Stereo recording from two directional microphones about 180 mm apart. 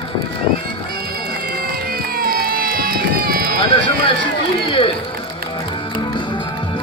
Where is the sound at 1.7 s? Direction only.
55° right (ahead or behind).